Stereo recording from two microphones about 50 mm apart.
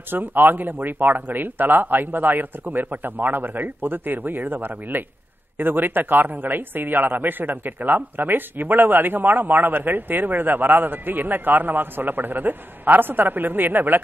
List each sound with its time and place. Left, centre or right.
0.1 s speech: right